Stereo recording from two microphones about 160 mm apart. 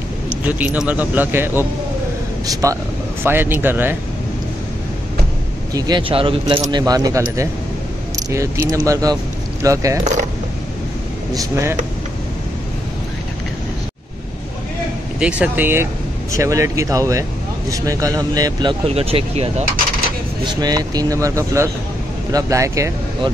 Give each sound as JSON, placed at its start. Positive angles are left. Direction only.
{"t": 0.4, "sound": "speech", "side_deg": -10}
{"t": 5.7, "sound": "speech", "side_deg": -25}
{"t": 11.3, "sound": "speech", "side_deg": -15}
{"t": 15.1, "sound": "speech", "side_deg": -5}
{"t": 20.6, "sound": "speech", "side_deg": -25}